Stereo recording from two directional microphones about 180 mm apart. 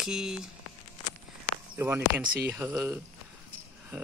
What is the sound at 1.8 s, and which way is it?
Speech, 10° right (ahead or behind).